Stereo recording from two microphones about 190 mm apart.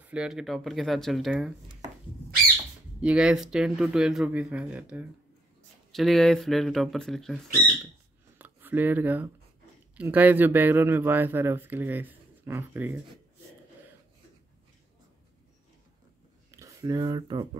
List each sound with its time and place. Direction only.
0.0 s speech: 5° right (ahead or behind)
3.0 s speech: 5° right (ahead or behind)
16.4 s speech: 15° right (ahead or behind)